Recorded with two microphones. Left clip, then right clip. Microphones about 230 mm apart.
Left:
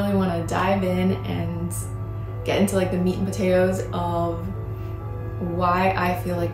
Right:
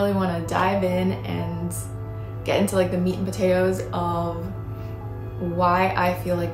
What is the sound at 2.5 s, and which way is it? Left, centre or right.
Music, centre.